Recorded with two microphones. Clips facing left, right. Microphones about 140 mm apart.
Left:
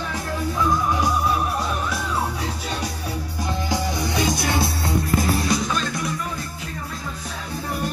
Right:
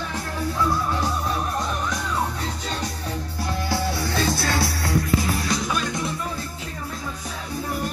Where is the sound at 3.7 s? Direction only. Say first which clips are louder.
Even; 15° left (ahead or behind).